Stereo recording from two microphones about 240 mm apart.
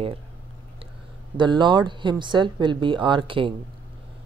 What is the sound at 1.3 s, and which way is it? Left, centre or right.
Speech, centre.